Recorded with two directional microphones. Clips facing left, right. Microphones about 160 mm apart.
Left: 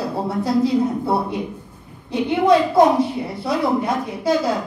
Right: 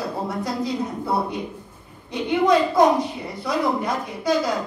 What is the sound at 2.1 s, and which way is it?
A woman's voice, 30° left (ahead or behind).